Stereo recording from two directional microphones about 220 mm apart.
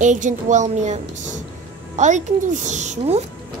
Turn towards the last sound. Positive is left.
turn(degrees=-30)  # may be behind; listen again after turning